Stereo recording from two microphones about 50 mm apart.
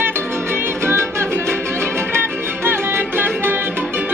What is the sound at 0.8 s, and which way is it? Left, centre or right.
Music, right.